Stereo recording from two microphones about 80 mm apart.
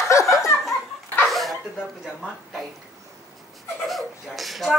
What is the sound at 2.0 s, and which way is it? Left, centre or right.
Speech, centre.